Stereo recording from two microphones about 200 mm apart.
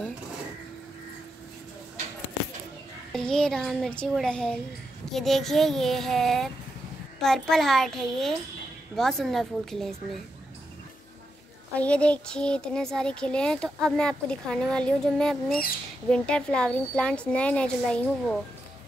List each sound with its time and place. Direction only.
3.1 s a child's voice: 5° left (ahead or behind)
11.7 s a child's voice: 5° left (ahead or behind)